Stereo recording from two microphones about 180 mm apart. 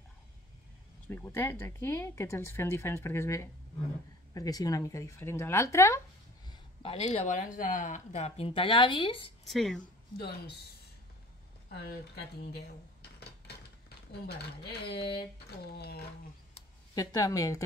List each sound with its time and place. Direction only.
1.0 s speech: 10° left (ahead or behind)
6.4 s speech: 25° left (ahead or behind)
9.5 s speech: centre (ahead or behind)
10.1 s speech: 65° left (ahead or behind)
11.7 s speech: 60° left (ahead or behind)
16.9 s speech: 20° left (ahead or behind)